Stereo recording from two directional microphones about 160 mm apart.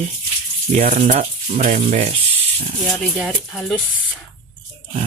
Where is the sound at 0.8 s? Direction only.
50° right (ahead or behind).